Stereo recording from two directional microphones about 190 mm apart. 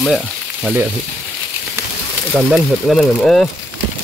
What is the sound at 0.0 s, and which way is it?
Frying, centre (ahead or behind).